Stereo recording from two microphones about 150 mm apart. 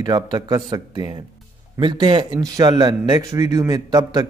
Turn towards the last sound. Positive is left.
turn(degrees=-25)  # may be behind; listen again after turning